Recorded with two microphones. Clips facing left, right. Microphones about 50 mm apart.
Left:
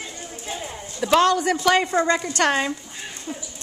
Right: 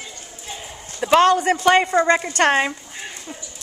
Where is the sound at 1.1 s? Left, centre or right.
Right.